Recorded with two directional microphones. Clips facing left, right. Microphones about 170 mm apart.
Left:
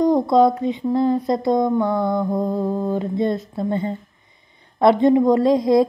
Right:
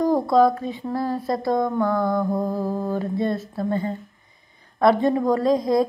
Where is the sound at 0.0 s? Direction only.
20° left (ahead or behind).